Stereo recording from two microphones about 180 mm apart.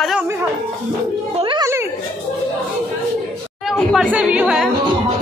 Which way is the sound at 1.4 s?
25° right (ahead or behind).